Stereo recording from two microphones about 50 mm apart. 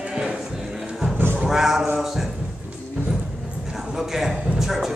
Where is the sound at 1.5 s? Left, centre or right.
Centre.